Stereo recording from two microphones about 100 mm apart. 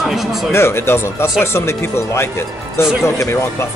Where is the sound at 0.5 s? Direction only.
25° left (ahead or behind).